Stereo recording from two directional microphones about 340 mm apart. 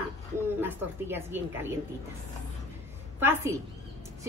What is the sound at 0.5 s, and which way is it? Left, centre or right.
A woman's voice, centre.